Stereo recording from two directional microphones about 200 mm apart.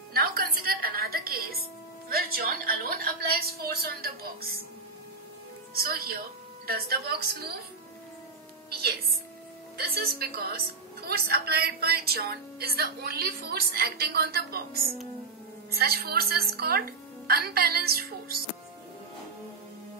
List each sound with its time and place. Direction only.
0.1 s music: 50° right (ahead or behind)
2.0 s a woman's voice: 50° right (ahead or behind)
5.8 s a woman's voice: 50° right (ahead or behind)
9.8 s a woman's voice: 50° right (ahead or behind)